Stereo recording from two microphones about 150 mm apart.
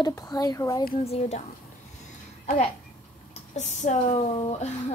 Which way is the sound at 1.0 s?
45° left (ahead or behind).